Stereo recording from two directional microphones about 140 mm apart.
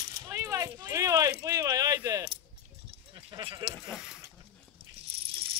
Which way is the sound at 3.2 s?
35° right (ahead or behind).